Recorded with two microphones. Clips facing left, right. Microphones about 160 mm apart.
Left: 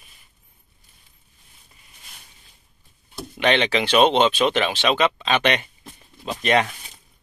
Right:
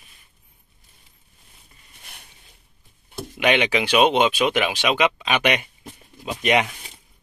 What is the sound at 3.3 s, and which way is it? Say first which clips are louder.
Speech: even; 10° right (ahead or behind).